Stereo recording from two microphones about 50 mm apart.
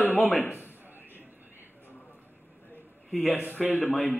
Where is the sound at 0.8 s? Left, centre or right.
Right.